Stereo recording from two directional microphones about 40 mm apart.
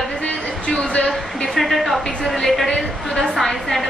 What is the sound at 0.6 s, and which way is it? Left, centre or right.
Speech, left.